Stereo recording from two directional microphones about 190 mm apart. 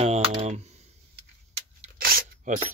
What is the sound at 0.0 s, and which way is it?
Typing, 30° right (ahead or behind).